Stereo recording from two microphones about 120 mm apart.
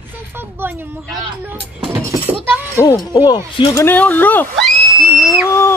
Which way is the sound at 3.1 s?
40° left (ahead or behind).